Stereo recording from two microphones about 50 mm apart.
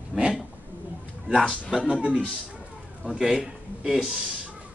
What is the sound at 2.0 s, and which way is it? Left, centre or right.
A man's voice, right.